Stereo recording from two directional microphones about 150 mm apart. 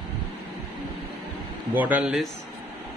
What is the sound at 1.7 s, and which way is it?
Speech, 10° right (ahead or behind).